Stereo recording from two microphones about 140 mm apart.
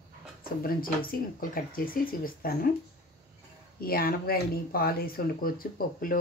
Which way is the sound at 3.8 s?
90° left.